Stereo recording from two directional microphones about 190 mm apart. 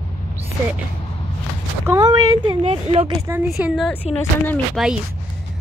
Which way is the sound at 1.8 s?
15° right (ahead or behind).